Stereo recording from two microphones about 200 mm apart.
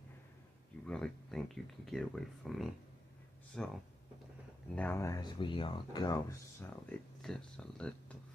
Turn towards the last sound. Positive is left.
turn(degrees=5)  # may be behind; listen again after turning